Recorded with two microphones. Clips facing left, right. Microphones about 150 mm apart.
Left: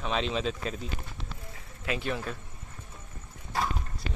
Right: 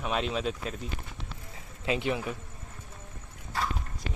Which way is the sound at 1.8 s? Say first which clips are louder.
Right 3 dB; 20° right (ahead or behind).